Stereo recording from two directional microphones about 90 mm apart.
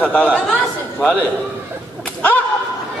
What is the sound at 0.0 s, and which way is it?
Speech, 15° left (ahead or behind).